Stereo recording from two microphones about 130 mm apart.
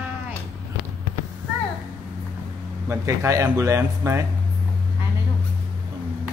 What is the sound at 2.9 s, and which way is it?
A man's voice, 25° right (ahead or behind).